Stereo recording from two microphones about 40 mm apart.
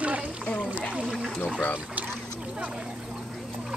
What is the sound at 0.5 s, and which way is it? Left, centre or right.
Speech, left.